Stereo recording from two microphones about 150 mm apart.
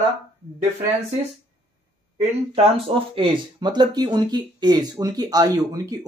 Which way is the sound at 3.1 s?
30° right (ahead or behind).